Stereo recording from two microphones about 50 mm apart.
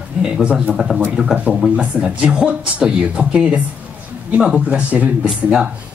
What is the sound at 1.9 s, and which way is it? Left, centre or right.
A man's voice, right.